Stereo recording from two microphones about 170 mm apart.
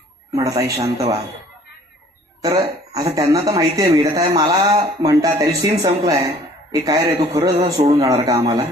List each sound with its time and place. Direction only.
0.3 s speech: 20° right (ahead or behind)
2.4 s speech: 20° right (ahead or behind)